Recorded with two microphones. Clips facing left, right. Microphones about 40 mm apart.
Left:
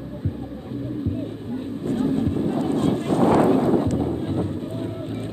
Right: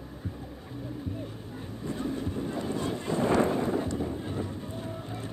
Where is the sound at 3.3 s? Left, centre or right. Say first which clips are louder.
Left 7 dB; left.